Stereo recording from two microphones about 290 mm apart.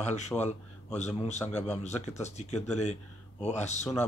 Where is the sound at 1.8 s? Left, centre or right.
Left.